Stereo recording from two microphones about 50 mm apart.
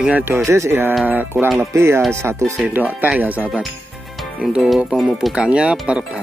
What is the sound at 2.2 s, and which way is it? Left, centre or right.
Speech, right.